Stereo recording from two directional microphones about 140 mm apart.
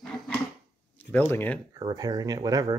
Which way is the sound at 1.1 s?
15° left (ahead or behind).